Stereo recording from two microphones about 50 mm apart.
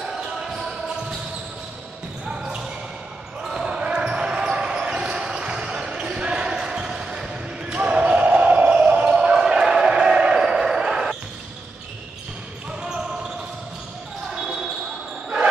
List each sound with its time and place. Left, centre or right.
0.0 s basketball bounce: centre
2.2 s basketball bounce: centre
14.3 s basketball bounce: centre